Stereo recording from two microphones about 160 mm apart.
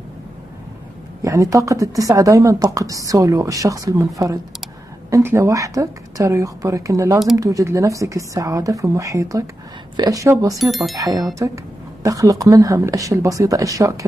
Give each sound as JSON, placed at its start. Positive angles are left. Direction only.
{"t": 1.2, "sound": "speech", "side_deg": -20}
{"t": 5.1, "sound": "speech", "side_deg": -20}
{"t": 10.6, "sound": "speech", "side_deg": 0}
{"t": 11.0, "sound": "speech", "side_deg": -20}